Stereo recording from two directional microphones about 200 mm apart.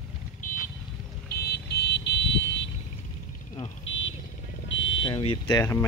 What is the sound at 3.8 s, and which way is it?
Vehicle, 70° left (ahead or behind).